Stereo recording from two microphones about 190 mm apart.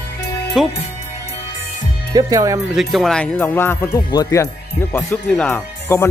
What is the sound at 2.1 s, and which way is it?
Speech, 15° right (ahead or behind).